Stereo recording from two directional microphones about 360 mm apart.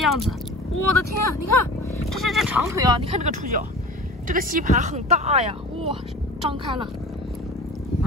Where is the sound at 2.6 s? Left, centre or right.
Centre.